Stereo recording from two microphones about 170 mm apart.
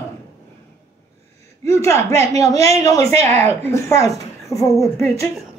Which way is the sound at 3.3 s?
40° right (ahead or behind).